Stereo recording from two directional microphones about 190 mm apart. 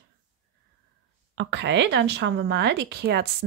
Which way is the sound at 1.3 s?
70° right (ahead or behind).